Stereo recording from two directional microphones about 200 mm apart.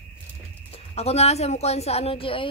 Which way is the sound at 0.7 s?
30° left (ahead or behind).